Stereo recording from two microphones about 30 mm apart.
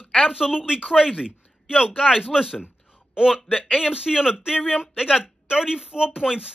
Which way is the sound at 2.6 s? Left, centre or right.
Right.